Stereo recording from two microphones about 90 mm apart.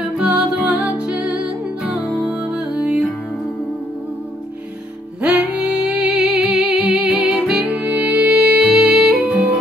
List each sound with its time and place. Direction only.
0.2 s music: 10° right (ahead or behind)
5.2 s music: 10° right (ahead or behind)